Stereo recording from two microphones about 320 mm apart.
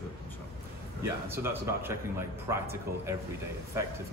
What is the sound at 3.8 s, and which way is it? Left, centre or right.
Speech, centre.